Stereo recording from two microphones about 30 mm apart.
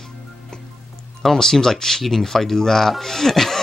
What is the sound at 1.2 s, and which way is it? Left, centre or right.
Speech, centre.